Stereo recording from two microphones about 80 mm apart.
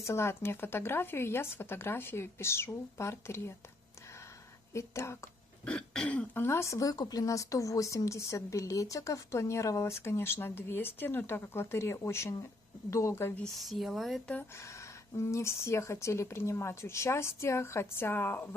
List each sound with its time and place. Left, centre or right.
0.0 s a woman's voice: left
4.7 s a woman's voice: left
5.7 s throat clearing: centre
6.3 s a woman's voice: left
13.4 s speech: centre
14.6 s a woman's voice: left